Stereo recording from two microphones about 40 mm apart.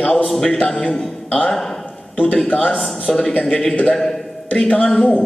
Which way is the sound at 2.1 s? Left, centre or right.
Left.